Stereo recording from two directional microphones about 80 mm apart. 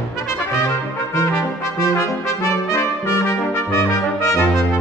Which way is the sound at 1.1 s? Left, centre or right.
Left.